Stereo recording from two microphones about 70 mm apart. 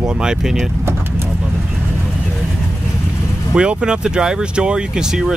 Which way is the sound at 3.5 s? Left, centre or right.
Centre.